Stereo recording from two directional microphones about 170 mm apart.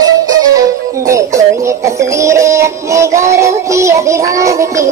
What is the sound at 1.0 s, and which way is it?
Music, 20° right (ahead or behind).